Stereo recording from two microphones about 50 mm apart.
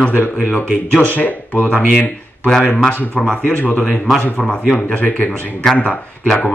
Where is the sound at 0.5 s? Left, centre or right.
Centre.